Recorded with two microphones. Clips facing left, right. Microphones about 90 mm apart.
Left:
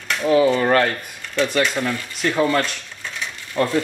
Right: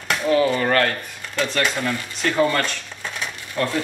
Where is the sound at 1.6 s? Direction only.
Centre (ahead or behind).